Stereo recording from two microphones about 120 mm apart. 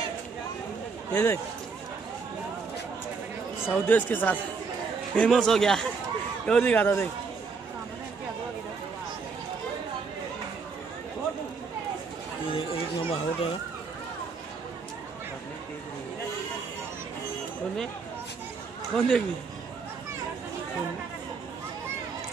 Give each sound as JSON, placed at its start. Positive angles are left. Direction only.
{"t": 1.1, "sound": "speech", "side_deg": 25}
{"t": 3.6, "sound": "speech", "side_deg": 15}
{"t": 5.3, "sound": "speech", "side_deg": 5}
{"t": 12.4, "sound": "chatter", "side_deg": 50}
{"t": 18.9, "sound": "speech", "side_deg": 5}